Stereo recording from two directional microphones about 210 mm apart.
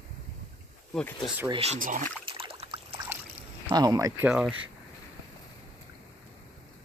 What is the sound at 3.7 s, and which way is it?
Speech, 15° right (ahead or behind).